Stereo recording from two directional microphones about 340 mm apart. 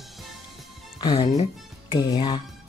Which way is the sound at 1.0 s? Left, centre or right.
Centre.